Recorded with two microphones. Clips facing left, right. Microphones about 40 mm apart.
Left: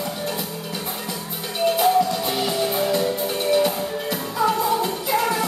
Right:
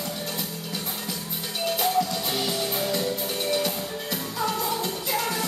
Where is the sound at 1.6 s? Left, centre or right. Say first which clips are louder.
Left 7 dB; centre.